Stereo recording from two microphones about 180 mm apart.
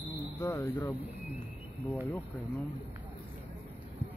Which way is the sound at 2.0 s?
10° left (ahead or behind).